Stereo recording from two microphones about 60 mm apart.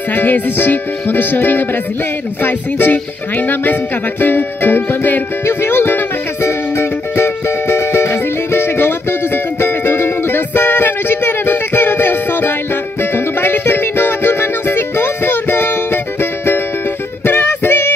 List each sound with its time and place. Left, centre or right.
0.1 s music: left